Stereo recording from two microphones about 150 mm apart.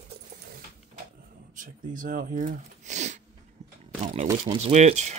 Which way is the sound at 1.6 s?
65° right (ahead or behind).